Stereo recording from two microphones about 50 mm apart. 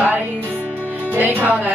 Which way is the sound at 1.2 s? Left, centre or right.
Right.